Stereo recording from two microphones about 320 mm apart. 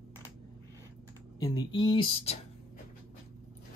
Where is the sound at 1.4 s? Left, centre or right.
Centre.